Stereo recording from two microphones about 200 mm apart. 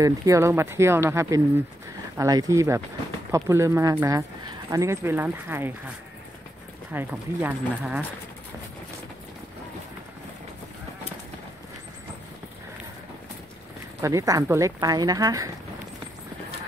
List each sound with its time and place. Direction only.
0.0 s speech: 15° right (ahead or behind)
6.9 s speech: 10° right (ahead or behind)
14.0 s speech: 15° right (ahead or behind)